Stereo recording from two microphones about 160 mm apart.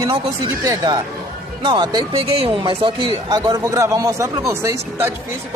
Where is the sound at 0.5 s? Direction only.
20° right (ahead or behind).